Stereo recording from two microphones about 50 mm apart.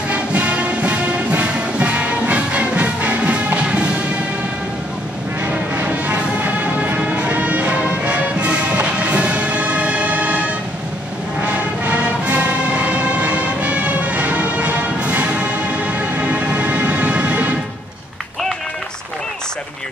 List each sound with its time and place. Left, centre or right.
0.1 s music: right
5.9 s music: right